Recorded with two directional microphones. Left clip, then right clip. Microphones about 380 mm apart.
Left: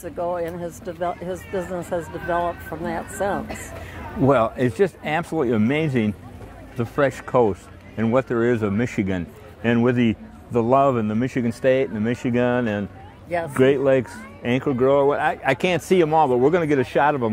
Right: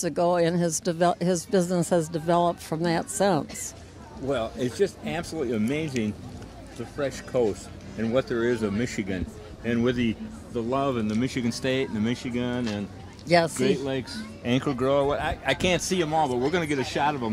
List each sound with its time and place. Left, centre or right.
0.0 s speech: right
4.3 s a man's voice: left